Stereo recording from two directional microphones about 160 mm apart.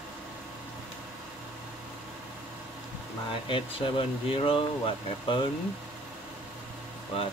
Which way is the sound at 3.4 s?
35° left (ahead or behind).